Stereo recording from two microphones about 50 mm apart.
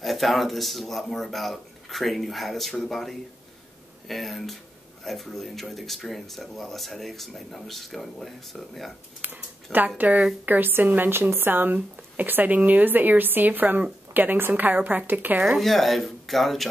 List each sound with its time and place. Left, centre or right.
0.0 s speech: centre
9.2 s speech: right
15.6 s speech: centre